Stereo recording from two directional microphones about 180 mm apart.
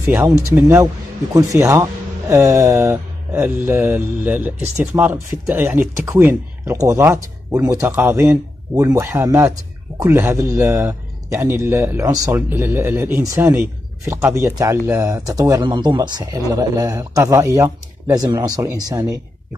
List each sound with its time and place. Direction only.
0.1 s speech: 15° right (ahead or behind)